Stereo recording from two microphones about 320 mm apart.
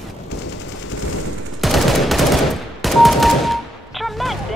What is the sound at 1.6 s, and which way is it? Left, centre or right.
Gunshot, centre.